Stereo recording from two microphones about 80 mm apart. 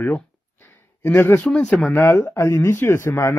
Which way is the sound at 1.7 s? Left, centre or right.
Centre.